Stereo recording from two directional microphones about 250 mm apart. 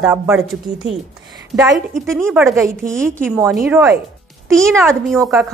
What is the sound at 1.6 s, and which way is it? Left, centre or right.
Speech, centre.